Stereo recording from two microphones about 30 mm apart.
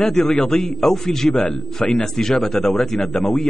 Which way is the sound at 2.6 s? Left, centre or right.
Left.